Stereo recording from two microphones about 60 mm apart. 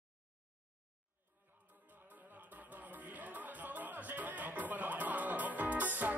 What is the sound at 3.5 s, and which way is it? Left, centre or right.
Music, right.